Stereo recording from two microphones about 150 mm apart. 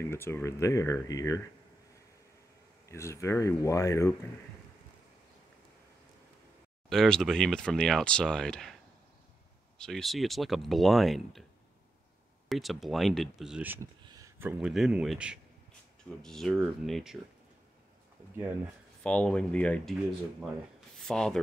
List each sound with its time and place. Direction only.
0.0 s speech: 15° left (ahead or behind)
2.9 s speech: 20° left (ahead or behind)
6.9 s speech: 5° left (ahead or behind)
9.8 s speech: 5° left (ahead or behind)
12.4 s speech: centre (ahead or behind)
14.0 s a sound: 25° right (ahead or behind)
14.6 s speech: 5° right (ahead or behind)
19.0 s speech: 5° left (ahead or behind)
21.1 s speech: 5° left (ahead or behind)